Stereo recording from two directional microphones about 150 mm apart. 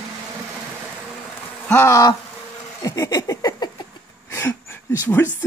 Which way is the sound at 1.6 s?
20° left (ahead or behind).